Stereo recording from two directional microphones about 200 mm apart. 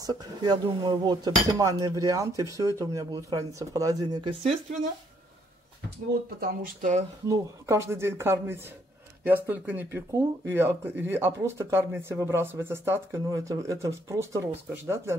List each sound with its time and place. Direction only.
0.0 s speech: 20° right (ahead or behind)
6.4 s speech: 40° right (ahead or behind)
7.2 s speech: 15° right (ahead or behind)